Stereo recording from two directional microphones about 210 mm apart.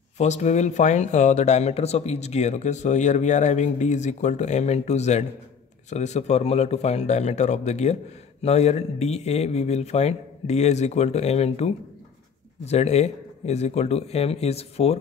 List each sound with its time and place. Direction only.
0.2 s speech: 35° left (ahead or behind)